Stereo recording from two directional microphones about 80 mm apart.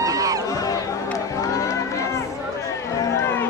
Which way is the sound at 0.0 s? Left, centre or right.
Right.